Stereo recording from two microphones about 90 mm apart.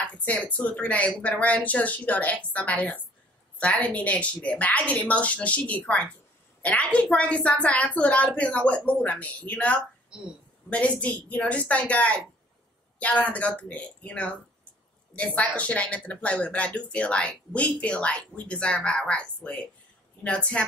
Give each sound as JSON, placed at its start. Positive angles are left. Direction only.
{"t": 0.0, "sound": "speech", "side_deg": 15}